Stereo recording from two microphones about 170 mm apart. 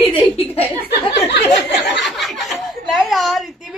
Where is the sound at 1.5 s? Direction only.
Centre (ahead or behind).